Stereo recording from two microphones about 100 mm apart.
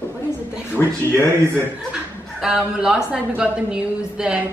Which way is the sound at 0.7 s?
20° left (ahead or behind).